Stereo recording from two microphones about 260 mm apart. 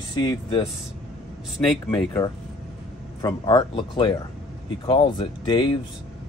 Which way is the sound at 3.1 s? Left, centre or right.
Centre.